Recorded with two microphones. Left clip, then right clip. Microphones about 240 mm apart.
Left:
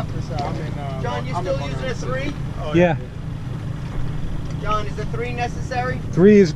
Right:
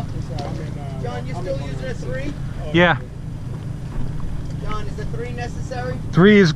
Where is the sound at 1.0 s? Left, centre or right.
Left.